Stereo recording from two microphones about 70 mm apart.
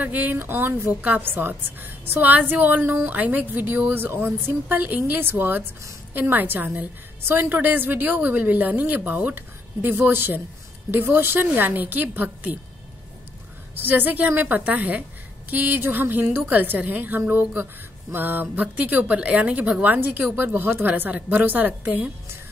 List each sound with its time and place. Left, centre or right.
0.0 s a woman's voice: right
13.8 s a woman's voice: right